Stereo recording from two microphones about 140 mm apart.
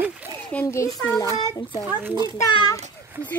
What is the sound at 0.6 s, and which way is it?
A child's voice, 20° left (ahead or behind).